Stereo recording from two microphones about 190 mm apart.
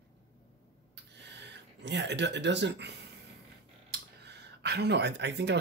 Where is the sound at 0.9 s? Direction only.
65° right (ahead or behind).